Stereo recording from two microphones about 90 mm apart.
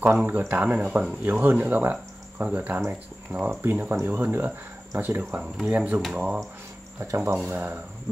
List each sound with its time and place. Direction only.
0.0 s speech: 20° right (ahead or behind)
7.4 s speech: 20° right (ahead or behind)